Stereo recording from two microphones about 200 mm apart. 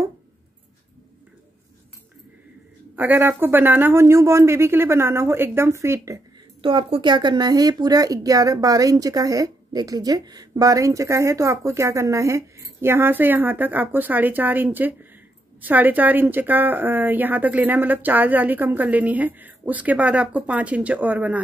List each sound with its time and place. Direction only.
3.0 s speech: 10° right (ahead or behind)
6.6 s speech: 25° right (ahead or behind); by 21.4 s 10° right (ahead or behind)